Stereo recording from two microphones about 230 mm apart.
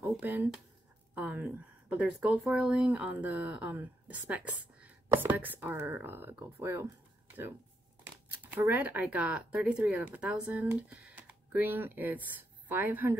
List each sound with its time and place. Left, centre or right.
0.0 s speech: centre
8.5 s speech: centre